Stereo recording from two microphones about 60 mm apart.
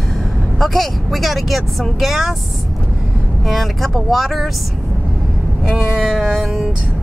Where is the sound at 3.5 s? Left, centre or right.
Centre.